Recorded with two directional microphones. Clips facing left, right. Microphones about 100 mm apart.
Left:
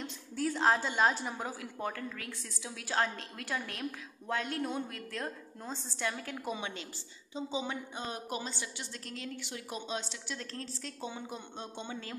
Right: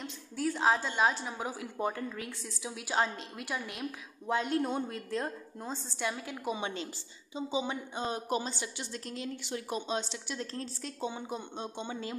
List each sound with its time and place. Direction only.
0.0 s a woman's voice: 5° right (ahead or behind)
1.6 s a woman's voice: 20° right (ahead or behind)
4.3 s a woman's voice: 25° right (ahead or behind)
5.7 s a woman's voice: 10° right (ahead or behind)
6.6 s a woman's voice: 30° right (ahead or behind)
7.3 s a woman's voice: 15° right (ahead or behind); by 10.1 s 30° right (ahead or behind)
10.2 s a woman's voice: 20° right (ahead or behind)